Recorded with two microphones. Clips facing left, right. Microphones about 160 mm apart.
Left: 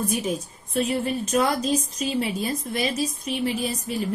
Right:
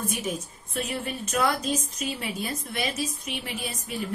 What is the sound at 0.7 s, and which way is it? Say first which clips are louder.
Speech: left 7 dB; 35° left (ahead or behind).